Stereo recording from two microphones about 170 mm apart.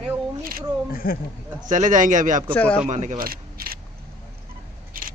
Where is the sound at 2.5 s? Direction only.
5° left (ahead or behind).